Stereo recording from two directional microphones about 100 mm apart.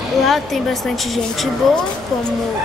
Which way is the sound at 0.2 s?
Centre (ahead or behind).